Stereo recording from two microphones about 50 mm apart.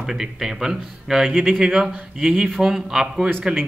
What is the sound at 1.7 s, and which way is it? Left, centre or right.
Speech, centre.